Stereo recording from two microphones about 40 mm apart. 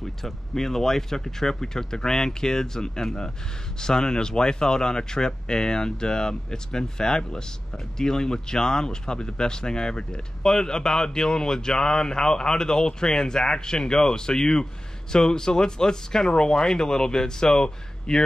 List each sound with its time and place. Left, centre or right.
0.2 s speech: centre